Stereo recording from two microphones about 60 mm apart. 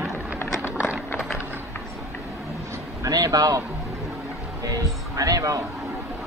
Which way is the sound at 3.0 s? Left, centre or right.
Right.